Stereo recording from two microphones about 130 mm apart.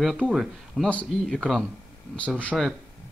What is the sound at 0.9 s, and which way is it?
Speech, 10° left (ahead or behind).